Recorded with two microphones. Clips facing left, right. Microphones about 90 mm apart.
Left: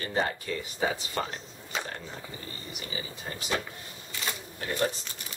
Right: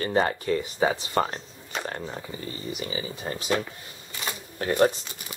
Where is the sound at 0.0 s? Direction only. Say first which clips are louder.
Right 6 dB; 50° right (ahead or behind).